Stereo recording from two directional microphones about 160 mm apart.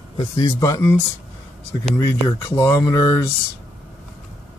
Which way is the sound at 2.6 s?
20° left (ahead or behind).